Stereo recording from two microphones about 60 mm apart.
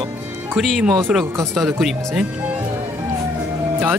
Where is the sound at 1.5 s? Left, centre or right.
Centre.